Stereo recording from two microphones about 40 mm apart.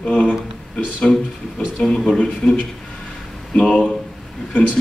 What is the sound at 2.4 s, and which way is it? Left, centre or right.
Speech, left.